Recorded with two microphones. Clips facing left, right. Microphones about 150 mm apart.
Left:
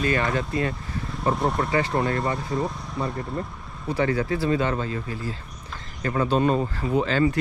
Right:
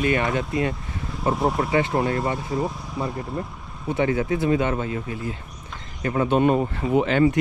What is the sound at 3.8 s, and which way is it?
Speech, 20° right (ahead or behind).